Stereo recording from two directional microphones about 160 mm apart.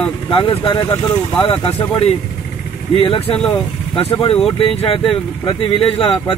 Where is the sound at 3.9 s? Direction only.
35° left (ahead or behind).